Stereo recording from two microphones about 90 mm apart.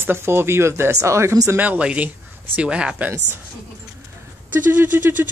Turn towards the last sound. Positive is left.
turn(degrees=-20)  # may be behind; listen again after turning